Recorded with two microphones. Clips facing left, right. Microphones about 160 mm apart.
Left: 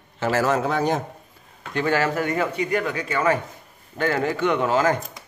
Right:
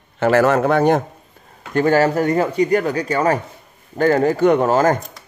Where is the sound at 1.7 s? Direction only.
40° right (ahead or behind).